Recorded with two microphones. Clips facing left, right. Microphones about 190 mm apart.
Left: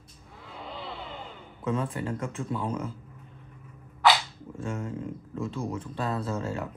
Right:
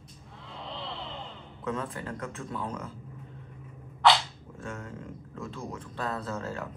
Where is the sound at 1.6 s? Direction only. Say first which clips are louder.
Left 4 dB; 25° left (ahead or behind).